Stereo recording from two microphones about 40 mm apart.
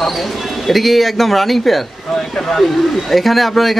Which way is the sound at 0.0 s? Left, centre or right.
Centre.